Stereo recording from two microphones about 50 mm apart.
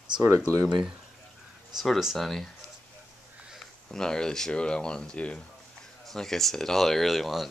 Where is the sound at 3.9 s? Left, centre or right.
Centre.